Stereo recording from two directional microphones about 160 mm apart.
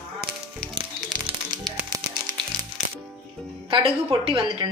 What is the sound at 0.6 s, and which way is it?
Music, 30° right (ahead or behind).